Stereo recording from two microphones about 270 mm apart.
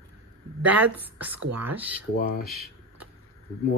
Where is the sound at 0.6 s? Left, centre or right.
Centre.